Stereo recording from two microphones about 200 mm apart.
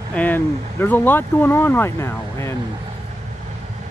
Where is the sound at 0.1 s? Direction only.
10° left (ahead or behind).